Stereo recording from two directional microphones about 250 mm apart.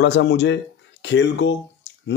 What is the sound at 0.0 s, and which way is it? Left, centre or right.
A man's voice, left.